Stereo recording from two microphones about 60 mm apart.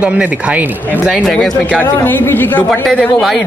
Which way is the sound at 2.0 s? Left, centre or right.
Left.